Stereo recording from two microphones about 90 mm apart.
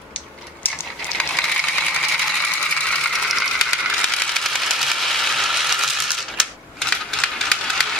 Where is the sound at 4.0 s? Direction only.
10° left (ahead or behind).